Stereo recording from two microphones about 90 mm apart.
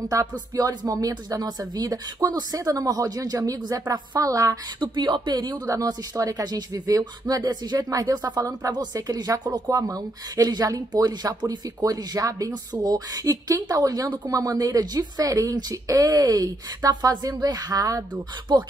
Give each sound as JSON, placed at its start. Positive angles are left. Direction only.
{"t": 0.1, "sound": "a woman's voice", "side_deg": -35}
{"t": 4.7, "sound": "a woman's voice", "side_deg": -55}